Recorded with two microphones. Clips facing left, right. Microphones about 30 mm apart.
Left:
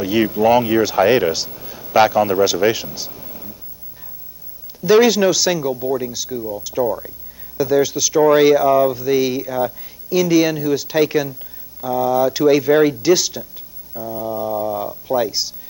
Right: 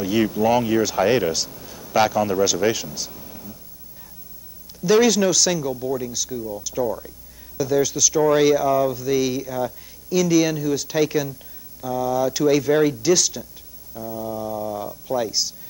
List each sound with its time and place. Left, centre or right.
0.0 s speech: centre
4.8 s speech: centre
13.9 s a sound: centre